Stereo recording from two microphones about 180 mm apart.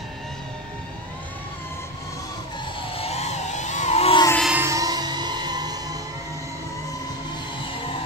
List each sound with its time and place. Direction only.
2.9 s vehicle: 35° left (ahead or behind)
4.4 s music: 5° right (ahead or behind)
4.6 s music: 20° right (ahead or behind)